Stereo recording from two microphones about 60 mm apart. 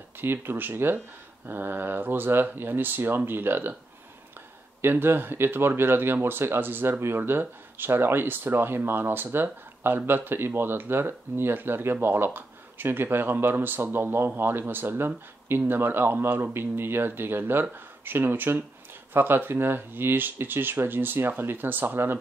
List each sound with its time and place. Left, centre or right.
0.2 s speech: right
4.8 s speech: right